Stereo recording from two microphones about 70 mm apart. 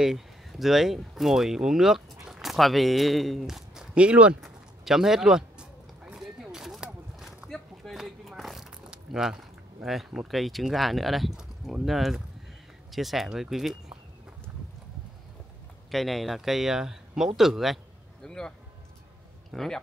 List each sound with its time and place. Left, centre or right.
0.0 s speech: centre
3.9 s speech: centre
4.4 s a sound: centre
12.9 s speech: centre
15.9 s speech: centre
18.2 s a sound: centre
19.5 s speech: centre